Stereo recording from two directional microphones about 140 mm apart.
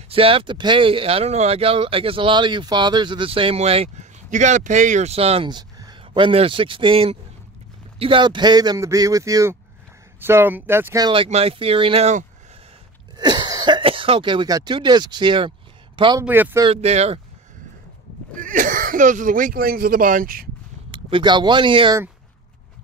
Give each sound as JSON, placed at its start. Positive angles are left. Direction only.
{"t": 0.1, "sound": "speech", "side_deg": -40}
{"t": 5.5, "sound": "a man's voice", "side_deg": -30}
{"t": 11.2, "sound": "speech", "side_deg": -45}
{"t": 13.2, "sound": "speech", "side_deg": -30}
{"t": 16.2, "sound": "speech", "side_deg": -15}
{"t": 16.6, "sound": "speech", "side_deg": -45}
{"t": 18.4, "sound": "speech", "side_deg": -70}
{"t": 20.9, "sound": "speech", "side_deg": -35}